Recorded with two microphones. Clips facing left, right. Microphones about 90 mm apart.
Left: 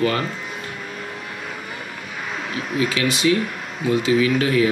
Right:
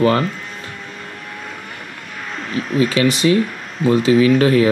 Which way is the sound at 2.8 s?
40° right (ahead or behind).